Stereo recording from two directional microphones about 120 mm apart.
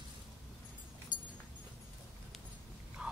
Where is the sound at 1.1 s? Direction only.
90° left.